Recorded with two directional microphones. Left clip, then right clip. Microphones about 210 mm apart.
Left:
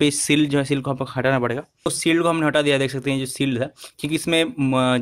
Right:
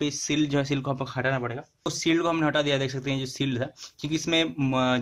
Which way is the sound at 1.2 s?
40° left (ahead or behind).